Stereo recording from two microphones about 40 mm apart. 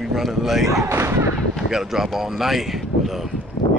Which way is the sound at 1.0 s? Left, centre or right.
Right.